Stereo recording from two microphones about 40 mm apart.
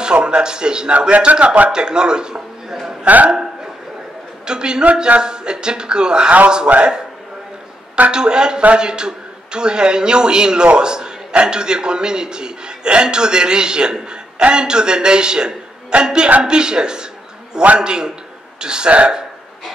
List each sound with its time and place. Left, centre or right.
0.0 s a man's voice: right
1.1 s a man's voice: right
1.7 s a man's voice: right
3.1 s a man's voice: right
4.5 s a man's voice: right
6.7 s a man's voice: right
8.1 s a man's voice: right